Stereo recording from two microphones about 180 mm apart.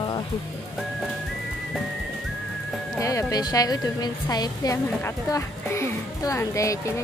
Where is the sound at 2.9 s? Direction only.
20° left (ahead or behind).